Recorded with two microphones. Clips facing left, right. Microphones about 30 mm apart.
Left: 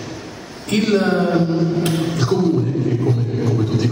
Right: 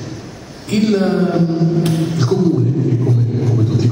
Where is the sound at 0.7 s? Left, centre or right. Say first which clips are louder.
Right 2 dB; centre.